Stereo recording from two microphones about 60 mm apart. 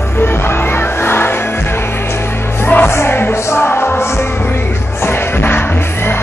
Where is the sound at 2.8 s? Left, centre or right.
Left.